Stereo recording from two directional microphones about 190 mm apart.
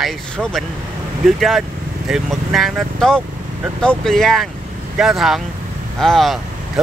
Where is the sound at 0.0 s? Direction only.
Centre (ahead or behind).